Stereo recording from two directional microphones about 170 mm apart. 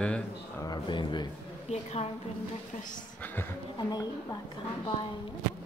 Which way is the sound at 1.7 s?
40° left (ahead or behind).